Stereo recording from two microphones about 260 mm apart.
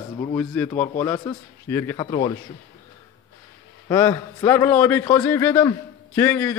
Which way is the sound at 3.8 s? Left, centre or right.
Centre.